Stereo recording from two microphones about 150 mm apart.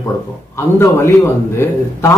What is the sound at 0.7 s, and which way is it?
Speech, 15° left (ahead or behind).